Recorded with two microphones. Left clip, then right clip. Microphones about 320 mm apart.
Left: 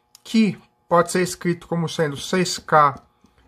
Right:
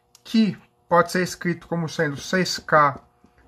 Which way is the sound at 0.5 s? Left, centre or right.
Centre.